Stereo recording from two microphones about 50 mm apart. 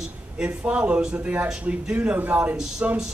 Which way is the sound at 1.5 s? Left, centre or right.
Centre.